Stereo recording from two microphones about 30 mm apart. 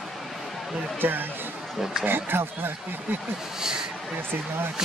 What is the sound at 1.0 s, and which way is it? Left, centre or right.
Speech, right.